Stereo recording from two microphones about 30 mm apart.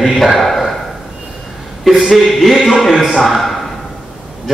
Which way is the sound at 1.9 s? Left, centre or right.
Centre.